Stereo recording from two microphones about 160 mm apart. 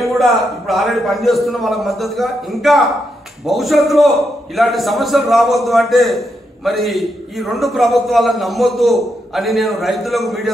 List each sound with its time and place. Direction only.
0.0 s a man's voice: centre (ahead or behind)